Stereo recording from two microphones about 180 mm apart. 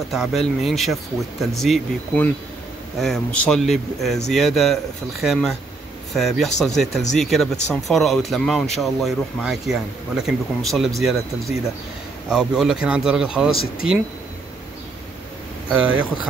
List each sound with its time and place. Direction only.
0.1 s speech: centre (ahead or behind)
15.7 s speech: 5° right (ahead or behind)